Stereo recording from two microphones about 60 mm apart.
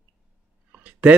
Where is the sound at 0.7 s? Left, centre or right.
Right.